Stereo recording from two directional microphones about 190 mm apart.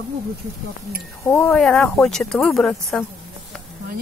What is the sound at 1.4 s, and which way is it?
A woman's voice, 5° left (ahead or behind).